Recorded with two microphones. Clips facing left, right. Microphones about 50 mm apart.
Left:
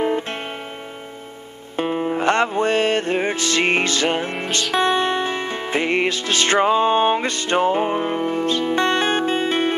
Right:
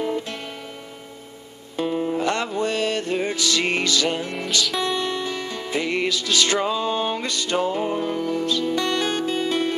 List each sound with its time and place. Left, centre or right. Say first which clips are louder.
0.0 s music: left 4 dB; left
1.8 s music: left 2 dB; left